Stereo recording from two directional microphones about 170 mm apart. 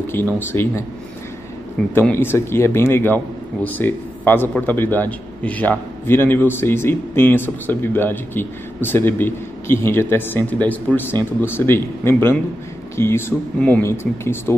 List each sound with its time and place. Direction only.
0.0 s a man's voice: 15° left (ahead or behind)
2.0 s a man's voice: 15° left (ahead or behind)